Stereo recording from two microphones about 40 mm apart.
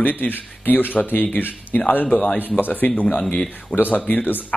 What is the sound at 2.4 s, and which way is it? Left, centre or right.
Speech, left.